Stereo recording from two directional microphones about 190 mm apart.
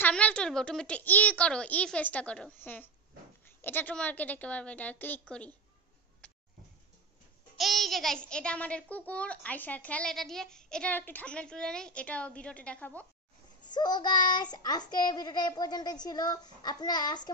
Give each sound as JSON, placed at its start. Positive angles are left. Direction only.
{"t": 0.0, "sound": "a child's voice", "side_deg": 5}
{"t": 7.5, "sound": "a child's voice", "side_deg": 0}
{"t": 13.7, "sound": "child singing", "side_deg": 20}